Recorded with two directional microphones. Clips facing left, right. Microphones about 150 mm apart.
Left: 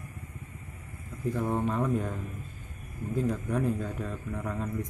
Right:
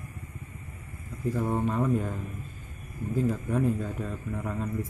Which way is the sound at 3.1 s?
Centre (ahead or behind).